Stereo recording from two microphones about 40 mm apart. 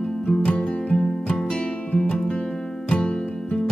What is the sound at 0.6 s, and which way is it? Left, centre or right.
Music, centre.